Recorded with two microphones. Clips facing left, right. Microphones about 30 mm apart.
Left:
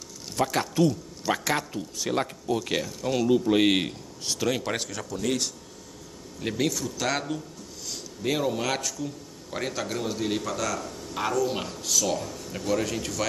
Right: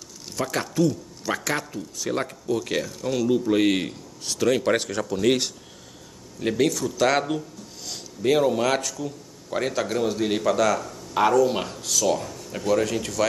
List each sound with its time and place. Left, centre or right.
0.4 s a man's voice: centre
5.1 s speech: right
6.4 s speech: centre
7.2 s a sound: right
8.2 s speech: centre
11.4 s speech: centre